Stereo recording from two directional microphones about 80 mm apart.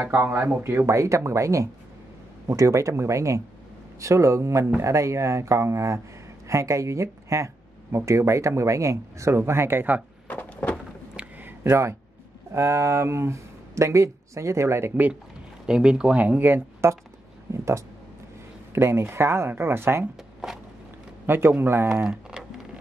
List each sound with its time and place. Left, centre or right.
0.0 s speech: right
10.2 s a sound: centre
11.1 s a sound: right
11.7 s speech: right
15.6 s speech: centre; by 16.9 s right
17.5 s speech: right
21.3 s a man's voice: right